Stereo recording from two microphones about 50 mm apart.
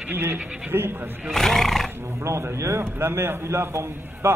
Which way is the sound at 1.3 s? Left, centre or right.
Centre.